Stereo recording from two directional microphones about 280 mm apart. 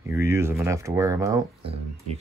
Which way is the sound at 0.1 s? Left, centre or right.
Centre.